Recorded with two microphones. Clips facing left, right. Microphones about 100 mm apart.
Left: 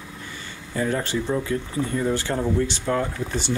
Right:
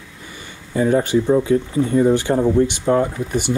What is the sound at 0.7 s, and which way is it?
Speech, 20° right (ahead or behind).